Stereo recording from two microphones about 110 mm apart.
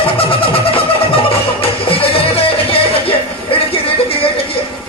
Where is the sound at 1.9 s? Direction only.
60° left (ahead or behind).